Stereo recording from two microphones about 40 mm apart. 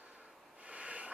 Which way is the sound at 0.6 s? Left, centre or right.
Right.